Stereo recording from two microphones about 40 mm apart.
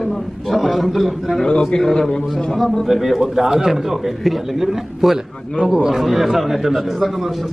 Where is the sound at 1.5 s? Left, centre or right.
Left.